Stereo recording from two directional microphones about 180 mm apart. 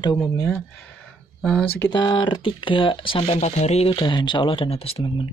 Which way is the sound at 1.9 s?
25° left (ahead or behind).